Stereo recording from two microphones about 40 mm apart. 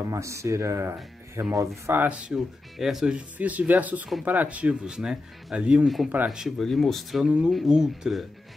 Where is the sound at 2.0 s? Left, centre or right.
Right.